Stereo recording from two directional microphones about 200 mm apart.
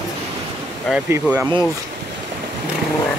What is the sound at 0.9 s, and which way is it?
Speech, 10° right (ahead or behind).